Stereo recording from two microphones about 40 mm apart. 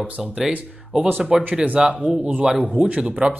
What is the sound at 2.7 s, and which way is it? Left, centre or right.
Speech, right.